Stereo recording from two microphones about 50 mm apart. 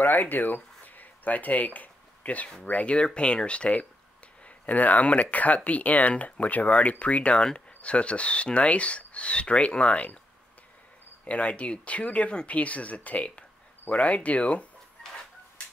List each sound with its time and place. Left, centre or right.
0.0 s speech: left
11.2 s speech: left